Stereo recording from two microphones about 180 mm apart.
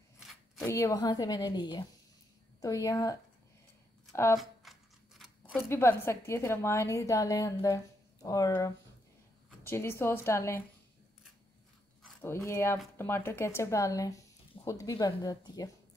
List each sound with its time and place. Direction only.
0.2 s a sound: centre (ahead or behind)
0.7 s a woman's voice: 15° left (ahead or behind)
4.4 s scissors: centre (ahead or behind)
5.7 s a woman's voice: 15° left (ahead or behind)
12.4 s a woman's voice: 15° left (ahead or behind)